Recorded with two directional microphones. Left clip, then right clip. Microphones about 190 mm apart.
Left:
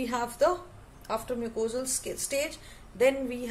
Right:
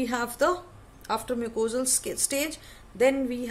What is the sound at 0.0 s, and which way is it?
Speech, 35° right (ahead or behind).